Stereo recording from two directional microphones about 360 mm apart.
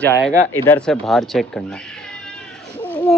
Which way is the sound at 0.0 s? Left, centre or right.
Centre.